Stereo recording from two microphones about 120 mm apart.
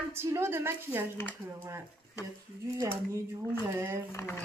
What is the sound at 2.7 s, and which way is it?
A woman's voice, 25° right (ahead or behind).